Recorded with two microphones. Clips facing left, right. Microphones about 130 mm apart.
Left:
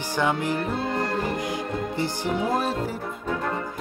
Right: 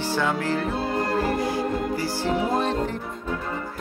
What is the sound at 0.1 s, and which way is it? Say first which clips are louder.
Music: left 1 dB; 15° left (ahead or behind).